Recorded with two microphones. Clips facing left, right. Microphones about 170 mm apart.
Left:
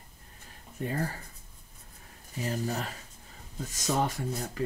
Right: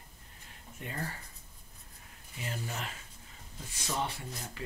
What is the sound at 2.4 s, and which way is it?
Speech, 40° left (ahead or behind).